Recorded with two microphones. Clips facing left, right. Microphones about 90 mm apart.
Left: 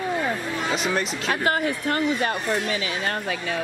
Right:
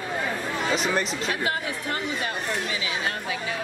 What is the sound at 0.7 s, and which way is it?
Speech, centre (ahead or behind).